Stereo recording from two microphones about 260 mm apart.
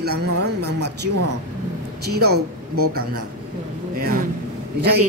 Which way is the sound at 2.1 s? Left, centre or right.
Right.